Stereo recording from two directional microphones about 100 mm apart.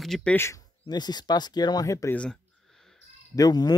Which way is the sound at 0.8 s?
45° left (ahead or behind).